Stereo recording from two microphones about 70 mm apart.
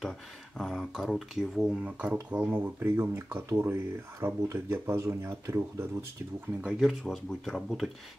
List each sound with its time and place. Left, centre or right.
0.6 s speech: centre; by 2.7 s right
2.8 s speech: right
6.8 s speech: centre